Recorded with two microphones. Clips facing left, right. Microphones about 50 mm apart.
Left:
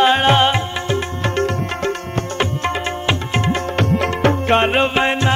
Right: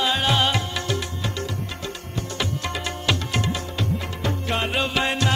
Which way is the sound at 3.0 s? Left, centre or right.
Left.